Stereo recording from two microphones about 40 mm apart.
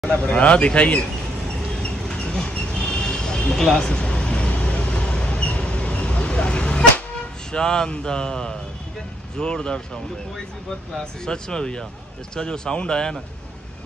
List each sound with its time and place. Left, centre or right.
0.0 s a man's voice: left
2.1 s a sound: centre
2.5 s vehicle: left
7.5 s a man's voice: centre
11.2 s a man's voice: centre